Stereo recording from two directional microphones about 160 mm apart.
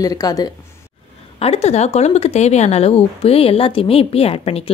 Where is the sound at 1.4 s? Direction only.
40° left (ahead or behind).